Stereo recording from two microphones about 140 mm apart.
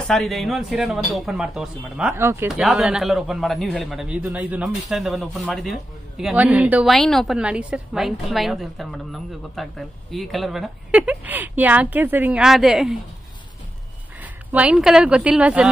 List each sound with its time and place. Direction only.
0.1 s a man's voice: centre (ahead or behind)
2.1 s speech: 20° right (ahead or behind)
2.4 s a man's voice: centre (ahead or behind)
14.2 s speech: 10° right (ahead or behind)